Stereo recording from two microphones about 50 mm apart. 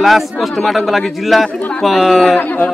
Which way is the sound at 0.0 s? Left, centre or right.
Centre.